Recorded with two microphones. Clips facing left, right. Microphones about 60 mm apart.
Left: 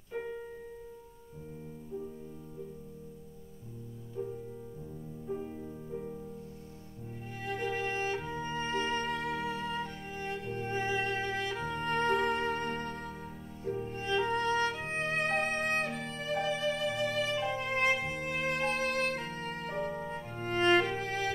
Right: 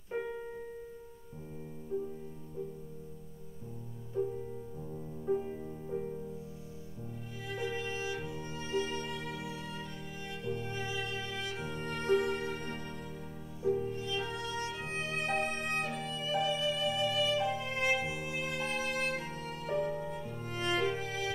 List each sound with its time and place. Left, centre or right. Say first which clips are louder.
5.3 s music: right 5 dB; centre
7.4 s music: left 3 dB; left